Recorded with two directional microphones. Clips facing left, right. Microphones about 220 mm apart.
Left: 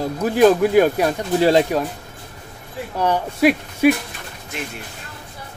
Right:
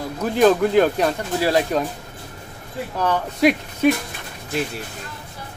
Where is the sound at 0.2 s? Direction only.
10° left (ahead or behind).